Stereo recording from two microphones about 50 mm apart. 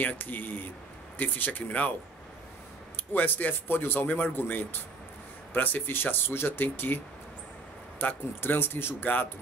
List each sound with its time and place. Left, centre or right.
0.0 s speech: left
3.1 s speech: left
8.0 s speech: left